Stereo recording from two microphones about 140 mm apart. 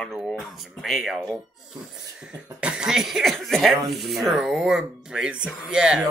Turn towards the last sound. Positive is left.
turn(degrees=-5)  # may be behind; listen again after turning